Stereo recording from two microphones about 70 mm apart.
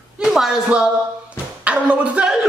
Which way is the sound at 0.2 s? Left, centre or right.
Centre.